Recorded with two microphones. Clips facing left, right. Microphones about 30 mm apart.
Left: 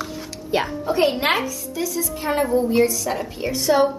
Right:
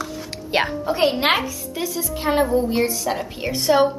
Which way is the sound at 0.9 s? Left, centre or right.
Centre.